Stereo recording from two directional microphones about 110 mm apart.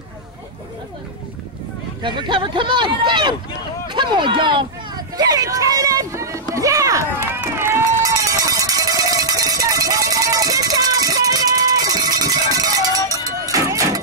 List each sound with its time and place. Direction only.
2.0 s speech: 45° right (ahead or behind); by 7.2 s 30° right (ahead or behind)
7.3 s run: 20° right (ahead or behind)
13.1 s music: 30° right (ahead or behind)